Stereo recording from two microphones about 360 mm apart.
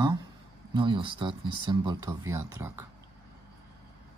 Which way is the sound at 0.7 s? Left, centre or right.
Centre.